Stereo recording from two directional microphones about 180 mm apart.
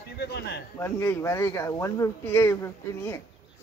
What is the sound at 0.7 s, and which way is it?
Speech, 15° left (ahead or behind).